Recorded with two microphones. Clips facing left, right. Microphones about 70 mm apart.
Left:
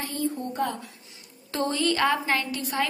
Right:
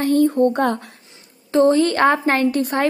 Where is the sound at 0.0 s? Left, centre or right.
Right.